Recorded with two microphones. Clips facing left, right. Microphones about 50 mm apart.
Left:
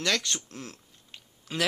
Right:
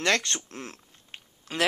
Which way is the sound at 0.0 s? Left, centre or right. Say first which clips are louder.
Right 3 dB; right.